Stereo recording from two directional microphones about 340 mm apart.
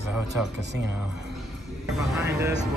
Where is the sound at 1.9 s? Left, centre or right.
Centre.